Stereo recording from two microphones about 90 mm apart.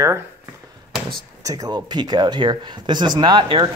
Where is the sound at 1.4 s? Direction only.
40° right (ahead or behind); by 3.6 s 55° right (ahead or behind).